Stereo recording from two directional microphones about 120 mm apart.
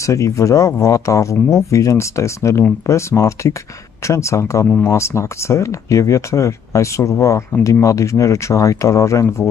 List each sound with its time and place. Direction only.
0.0 s speech: 25° left (ahead or behind)